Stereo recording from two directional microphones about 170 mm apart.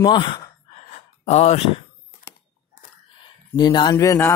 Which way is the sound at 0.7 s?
40° left (ahead or behind).